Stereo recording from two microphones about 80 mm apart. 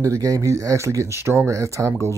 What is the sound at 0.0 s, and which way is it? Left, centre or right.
Speech, right.